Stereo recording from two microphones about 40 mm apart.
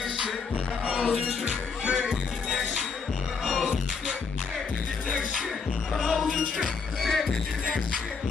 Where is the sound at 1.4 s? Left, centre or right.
Right.